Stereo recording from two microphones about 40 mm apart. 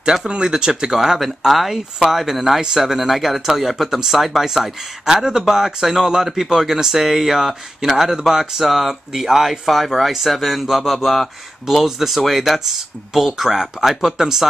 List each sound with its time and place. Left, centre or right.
0.0 s speech: centre
0.9 s speech: centre